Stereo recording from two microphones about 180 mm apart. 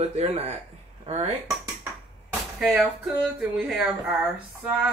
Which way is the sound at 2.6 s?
Centre (ahead or behind).